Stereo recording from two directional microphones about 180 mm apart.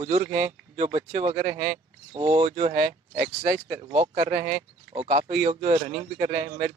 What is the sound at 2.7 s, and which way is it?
Speech, 55° right (ahead or behind).